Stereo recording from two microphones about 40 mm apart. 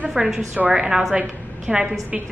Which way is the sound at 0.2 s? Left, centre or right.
Right.